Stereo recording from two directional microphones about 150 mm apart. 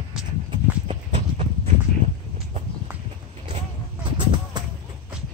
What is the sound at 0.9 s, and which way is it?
Horse, 40° right (ahead or behind).